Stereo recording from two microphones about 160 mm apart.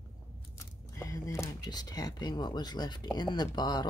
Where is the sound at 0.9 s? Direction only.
20° left (ahead or behind).